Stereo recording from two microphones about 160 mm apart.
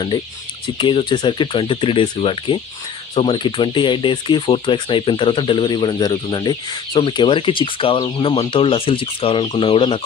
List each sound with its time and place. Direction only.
0.7 s speech: 30° left (ahead or behind)